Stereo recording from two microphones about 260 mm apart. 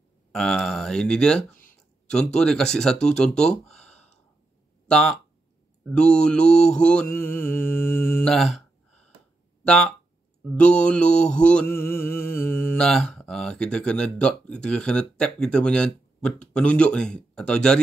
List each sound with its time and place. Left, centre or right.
0.3 s mantra: centre
4.8 s speech: centre
5.9 s mantra: centre